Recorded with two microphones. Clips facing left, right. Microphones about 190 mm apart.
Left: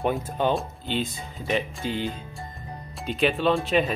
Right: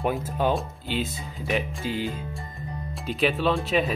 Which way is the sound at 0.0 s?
Centre (ahead or behind).